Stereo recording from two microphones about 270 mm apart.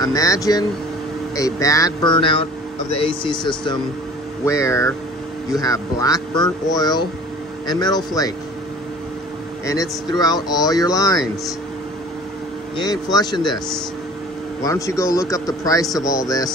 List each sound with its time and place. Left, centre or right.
0.0 s speech: centre
9.7 s speech: centre
12.7 s speech: centre
14.6 s speech: centre